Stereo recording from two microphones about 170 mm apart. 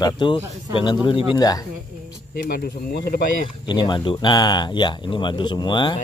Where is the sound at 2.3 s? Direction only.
65° left (ahead or behind).